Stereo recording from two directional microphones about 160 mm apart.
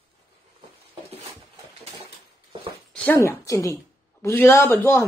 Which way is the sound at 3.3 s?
20° left (ahead or behind).